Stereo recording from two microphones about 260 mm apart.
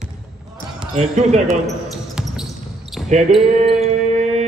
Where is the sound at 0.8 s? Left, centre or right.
Right.